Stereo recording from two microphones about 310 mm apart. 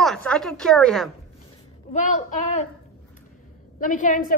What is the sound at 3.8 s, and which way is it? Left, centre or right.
Speech, left.